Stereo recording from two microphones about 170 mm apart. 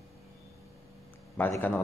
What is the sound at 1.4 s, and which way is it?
Speech, 10° left (ahead or behind).